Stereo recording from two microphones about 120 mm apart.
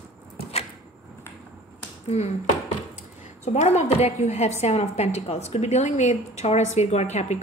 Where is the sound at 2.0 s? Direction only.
65° left (ahead or behind).